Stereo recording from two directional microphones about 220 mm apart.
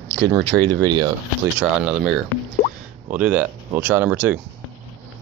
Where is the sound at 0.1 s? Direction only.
20° right (ahead or behind).